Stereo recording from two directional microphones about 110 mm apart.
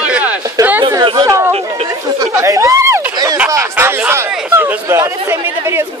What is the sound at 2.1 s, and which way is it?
Chatter, 30° right (ahead or behind).